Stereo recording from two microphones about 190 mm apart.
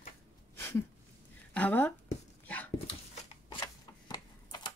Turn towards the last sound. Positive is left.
turn(degrees=20)  # may be behind; listen again after turning